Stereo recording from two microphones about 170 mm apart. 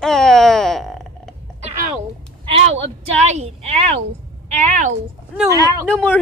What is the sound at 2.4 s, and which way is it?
A woman's voice, 35° right (ahead or behind).